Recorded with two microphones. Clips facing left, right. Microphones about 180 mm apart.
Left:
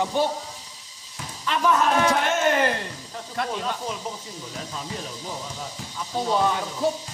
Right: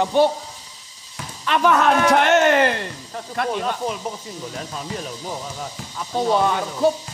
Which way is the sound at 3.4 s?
60° right (ahead or behind).